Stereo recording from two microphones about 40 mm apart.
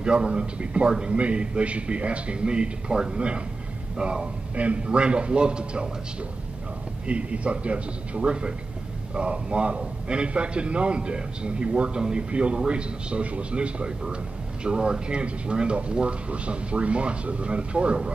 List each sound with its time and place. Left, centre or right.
0.0 s a man's voice: right
7.1 s a man's voice: right